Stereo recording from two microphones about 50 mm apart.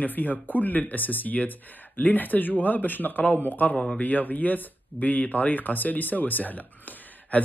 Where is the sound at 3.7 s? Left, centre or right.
Left.